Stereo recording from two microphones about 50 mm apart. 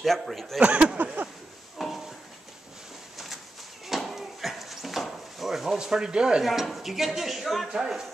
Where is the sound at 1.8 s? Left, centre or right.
Centre.